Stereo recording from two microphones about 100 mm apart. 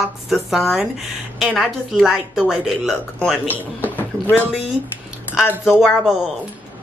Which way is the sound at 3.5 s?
20° left (ahead or behind).